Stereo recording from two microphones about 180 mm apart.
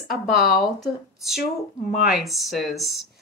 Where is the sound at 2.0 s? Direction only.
Centre (ahead or behind).